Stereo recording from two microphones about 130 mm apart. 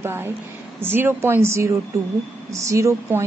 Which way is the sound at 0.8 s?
15° right (ahead or behind).